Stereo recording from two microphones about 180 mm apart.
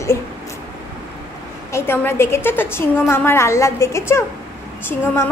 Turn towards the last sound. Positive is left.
turn(degrees=15)  # may be behind; listen again after turning